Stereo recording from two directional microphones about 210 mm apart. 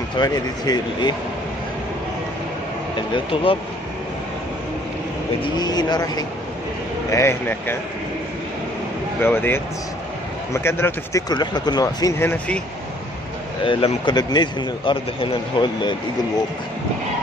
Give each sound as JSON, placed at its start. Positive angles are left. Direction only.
{"t": 0.2, "sound": "speech", "side_deg": 20}
{"t": 3.1, "sound": "speech", "side_deg": 25}
{"t": 5.4, "sound": "speech", "side_deg": 20}
{"t": 9.2, "sound": "speech", "side_deg": 10}
{"t": 13.7, "sound": "speech", "side_deg": 25}